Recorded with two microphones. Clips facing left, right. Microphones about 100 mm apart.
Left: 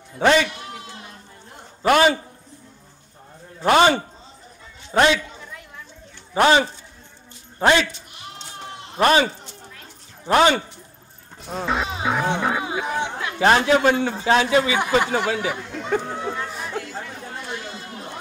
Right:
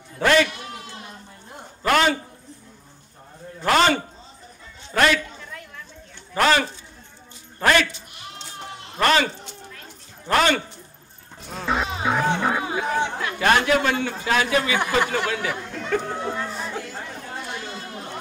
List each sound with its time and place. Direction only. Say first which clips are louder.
1.8 s a man's voice: left 3 dB; 15° left (ahead or behind)
3.6 s a man's voice: left 3 dB; 20° left (ahead or behind)
6.3 s a man's voice: left 3 dB; 20° left (ahead or behind)
8.9 s a man's voice: left 3 dB; 20° left (ahead or behind)
11.4 s music: left 1 dB; centre (ahead or behind)
12.4 s speech: even; 5° left (ahead or behind)
12.6 s chatter: right 1 dB; 15° left (ahead or behind)
13.4 s a man's voice: left 3 dB; 30° left (ahead or behind)
16.3 s chatter: even; 5° left (ahead or behind)